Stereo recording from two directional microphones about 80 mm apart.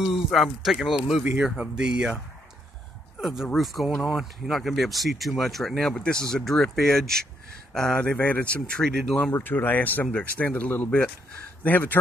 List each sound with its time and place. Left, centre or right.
0.0 s speech: centre
1.2 s speech: centre
3.2 s speech: centre
9.1 s speech: left